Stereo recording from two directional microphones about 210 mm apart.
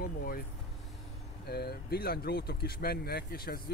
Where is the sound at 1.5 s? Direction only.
50° left (ahead or behind).